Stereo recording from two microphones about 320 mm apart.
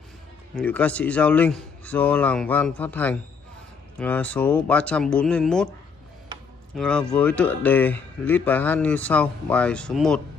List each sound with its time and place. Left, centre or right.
0.6 s speech: centre
6.7 s speech: centre